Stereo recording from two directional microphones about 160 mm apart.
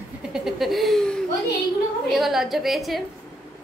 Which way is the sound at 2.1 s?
Centre (ahead or behind).